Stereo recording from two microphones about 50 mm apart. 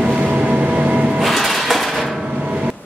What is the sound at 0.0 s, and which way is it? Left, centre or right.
Vehicle, right.